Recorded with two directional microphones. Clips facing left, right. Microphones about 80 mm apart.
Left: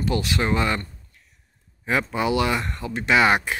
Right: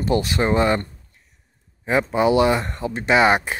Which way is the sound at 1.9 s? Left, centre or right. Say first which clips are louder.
Right 5 dB; right.